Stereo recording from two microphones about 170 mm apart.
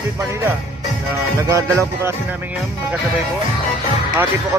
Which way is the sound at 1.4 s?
20° right (ahead or behind).